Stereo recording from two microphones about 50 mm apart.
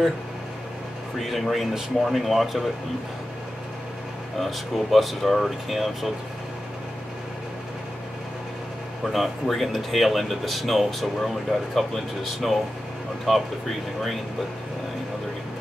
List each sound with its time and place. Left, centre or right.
1.2 s speech: centre
4.4 s speech: centre
9.1 s speech: centre